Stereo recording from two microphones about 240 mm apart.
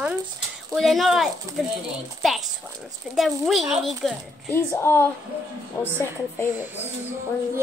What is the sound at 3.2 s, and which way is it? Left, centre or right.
A woman's voice, centre.